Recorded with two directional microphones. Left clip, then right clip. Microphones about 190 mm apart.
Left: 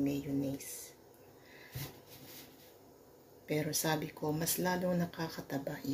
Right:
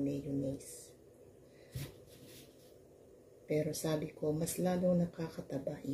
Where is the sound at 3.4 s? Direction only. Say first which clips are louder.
Left 1 dB; 15° right (ahead or behind).